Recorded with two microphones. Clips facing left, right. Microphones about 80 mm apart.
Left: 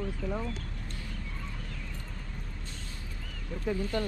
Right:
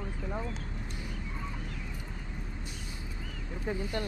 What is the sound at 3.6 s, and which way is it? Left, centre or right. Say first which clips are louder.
Speech: left 3 dB; centre.